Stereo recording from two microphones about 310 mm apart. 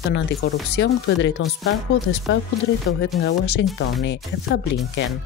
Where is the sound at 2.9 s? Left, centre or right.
Left.